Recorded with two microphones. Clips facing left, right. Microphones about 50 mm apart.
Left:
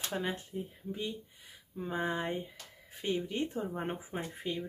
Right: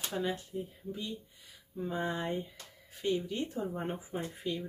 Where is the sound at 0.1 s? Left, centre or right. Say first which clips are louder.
Right 1 dB; left.